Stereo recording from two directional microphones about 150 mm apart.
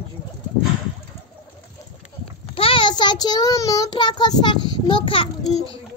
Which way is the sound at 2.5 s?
35° left (ahead or behind).